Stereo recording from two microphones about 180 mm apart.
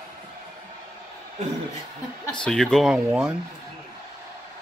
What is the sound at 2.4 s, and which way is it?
Speech, 5° left (ahead or behind).